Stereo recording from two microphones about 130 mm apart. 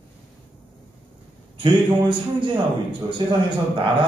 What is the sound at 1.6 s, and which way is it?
A man's voice, 40° right (ahead or behind).